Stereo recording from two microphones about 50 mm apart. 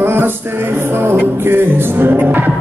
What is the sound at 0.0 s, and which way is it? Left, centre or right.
Music, right.